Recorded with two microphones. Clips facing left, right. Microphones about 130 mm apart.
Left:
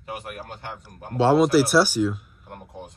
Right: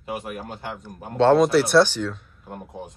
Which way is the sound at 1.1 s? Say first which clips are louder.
Right 1 dB; 5° left (ahead or behind).